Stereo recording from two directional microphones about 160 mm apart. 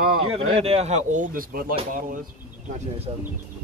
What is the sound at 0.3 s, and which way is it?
Speech, 40° right (ahead or behind).